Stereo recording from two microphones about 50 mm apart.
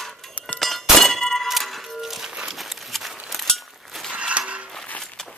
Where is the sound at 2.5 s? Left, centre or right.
Centre.